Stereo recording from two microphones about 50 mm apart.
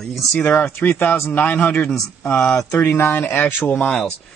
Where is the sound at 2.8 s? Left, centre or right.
Left.